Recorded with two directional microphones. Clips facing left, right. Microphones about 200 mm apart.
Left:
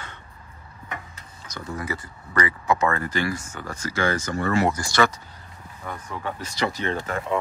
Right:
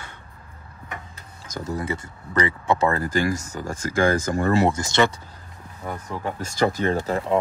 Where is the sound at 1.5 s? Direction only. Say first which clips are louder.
Right 5 dB; 40° right (ahead or behind).